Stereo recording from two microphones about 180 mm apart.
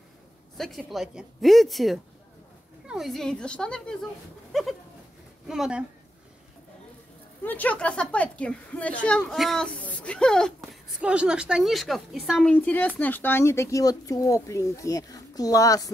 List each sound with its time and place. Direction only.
0.6 s a woman's voice: centre (ahead or behind)
4.5 s bird: centre (ahead or behind)
5.5 s a woman's voice: 5° right (ahead or behind)
7.4 s a woman's voice: 10° left (ahead or behind)